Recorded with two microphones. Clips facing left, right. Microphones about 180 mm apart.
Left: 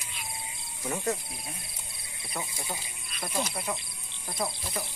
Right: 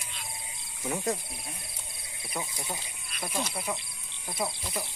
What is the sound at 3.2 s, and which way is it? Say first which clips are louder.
Speech: left 1 dB; centre (ahead or behind).